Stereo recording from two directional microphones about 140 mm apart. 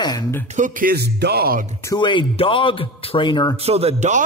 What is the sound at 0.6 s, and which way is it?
Speech, 75° right (ahead or behind).